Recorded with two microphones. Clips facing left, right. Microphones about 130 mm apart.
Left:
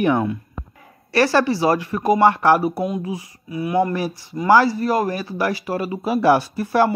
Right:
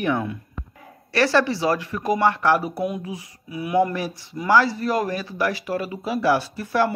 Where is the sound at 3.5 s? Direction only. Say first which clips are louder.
Left 4 dB; 15° right (ahead or behind).